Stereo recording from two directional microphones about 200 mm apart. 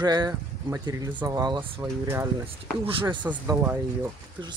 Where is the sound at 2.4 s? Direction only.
25° right (ahead or behind).